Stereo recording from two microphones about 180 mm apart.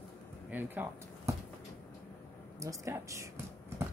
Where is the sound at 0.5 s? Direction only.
10° right (ahead or behind).